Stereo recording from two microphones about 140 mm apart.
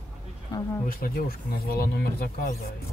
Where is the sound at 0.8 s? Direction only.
90° left.